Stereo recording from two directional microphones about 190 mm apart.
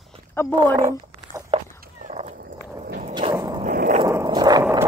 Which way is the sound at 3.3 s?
20° right (ahead or behind).